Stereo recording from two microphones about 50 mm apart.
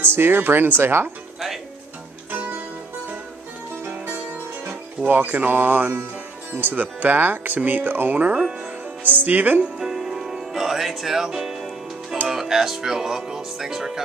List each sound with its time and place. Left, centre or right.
0.0 s speech: right
4.6 s speech: right
9.8 s music: centre
12.3 s speech: centre